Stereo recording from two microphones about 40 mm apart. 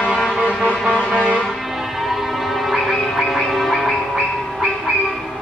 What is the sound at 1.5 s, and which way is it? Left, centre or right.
Music, centre.